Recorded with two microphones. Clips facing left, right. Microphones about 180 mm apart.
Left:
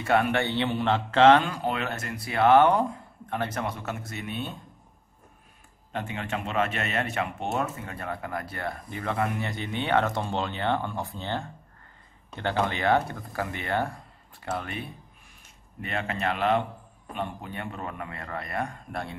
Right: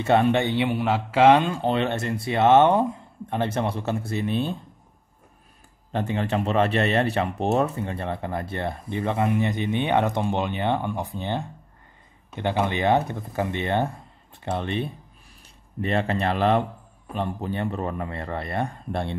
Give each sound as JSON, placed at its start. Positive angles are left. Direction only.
{"t": 0.0, "sound": "speech", "side_deg": -25}
{"t": 1.4, "sound": "speech", "side_deg": -25}
{"t": 5.9, "sound": "a man's voice", "side_deg": -35}